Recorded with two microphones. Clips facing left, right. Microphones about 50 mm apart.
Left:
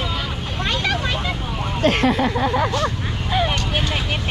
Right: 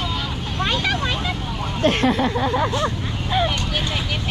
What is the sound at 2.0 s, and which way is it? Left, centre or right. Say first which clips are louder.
Speech: left 1 dB; left.